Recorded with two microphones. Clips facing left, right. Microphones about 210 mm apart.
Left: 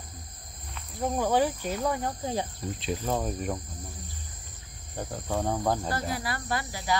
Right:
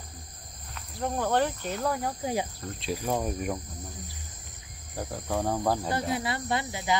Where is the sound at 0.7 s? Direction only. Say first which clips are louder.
Left 2 dB; centre (ahead or behind).